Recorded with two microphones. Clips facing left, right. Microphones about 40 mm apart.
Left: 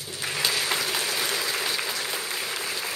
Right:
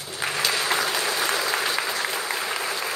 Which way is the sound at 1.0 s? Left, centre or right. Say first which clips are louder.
Right 3 dB; right.